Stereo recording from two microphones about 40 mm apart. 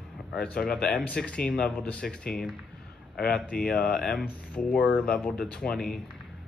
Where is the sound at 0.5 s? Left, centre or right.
Left.